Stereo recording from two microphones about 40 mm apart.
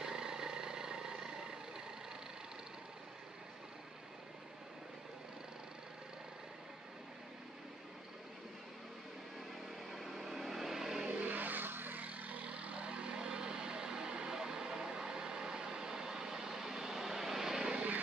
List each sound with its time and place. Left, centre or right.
0.0 s vehicle: centre
9.8 s vehicle: centre
11.2 s vehicle: right; by 17.7 s centre